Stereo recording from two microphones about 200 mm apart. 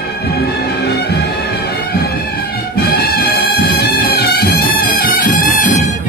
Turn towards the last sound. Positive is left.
turn(degrees=45)  # may be behind; listen again after turning